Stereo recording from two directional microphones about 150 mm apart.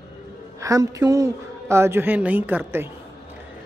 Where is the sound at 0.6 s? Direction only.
25° right (ahead or behind).